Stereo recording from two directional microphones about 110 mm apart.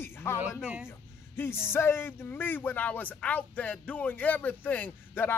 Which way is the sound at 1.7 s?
20° left (ahead or behind).